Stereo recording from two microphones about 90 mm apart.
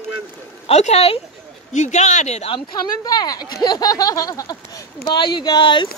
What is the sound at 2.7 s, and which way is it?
Speech, 50° left (ahead or behind).